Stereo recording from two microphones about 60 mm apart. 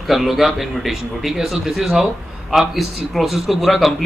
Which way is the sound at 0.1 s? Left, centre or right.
Centre.